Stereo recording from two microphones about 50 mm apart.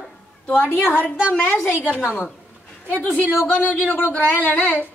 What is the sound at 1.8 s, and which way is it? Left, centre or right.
Speech, right.